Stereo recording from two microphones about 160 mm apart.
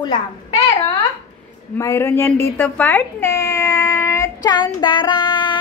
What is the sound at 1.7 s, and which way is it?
Speech, 15° left (ahead or behind).